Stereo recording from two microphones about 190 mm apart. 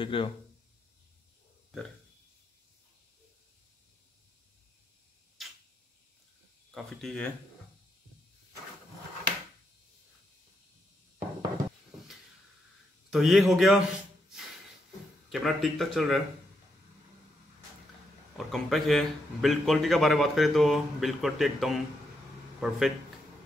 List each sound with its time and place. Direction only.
0.0 s speech: 25° left (ahead or behind)
5.4 s a sound: centre (ahead or behind)
6.7 s speech: centre (ahead or behind)
13.1 s a man's voice: centre (ahead or behind)
15.2 s a man's voice: centre (ahead or behind)
18.4 s a man's voice: centre (ahead or behind)